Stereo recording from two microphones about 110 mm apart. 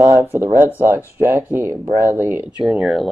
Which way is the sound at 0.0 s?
25° right (ahead or behind).